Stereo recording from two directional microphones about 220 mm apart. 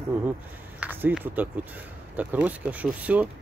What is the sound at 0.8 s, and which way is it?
Speech, 10° right (ahead or behind).